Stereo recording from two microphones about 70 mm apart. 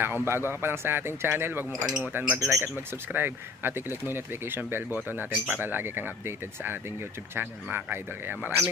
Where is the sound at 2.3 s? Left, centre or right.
Right.